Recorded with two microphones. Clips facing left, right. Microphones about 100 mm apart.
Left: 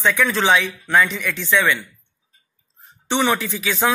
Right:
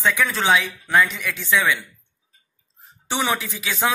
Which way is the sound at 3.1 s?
5° right (ahead or behind).